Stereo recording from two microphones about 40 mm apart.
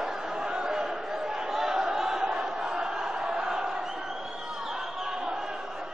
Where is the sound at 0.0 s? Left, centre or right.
Centre.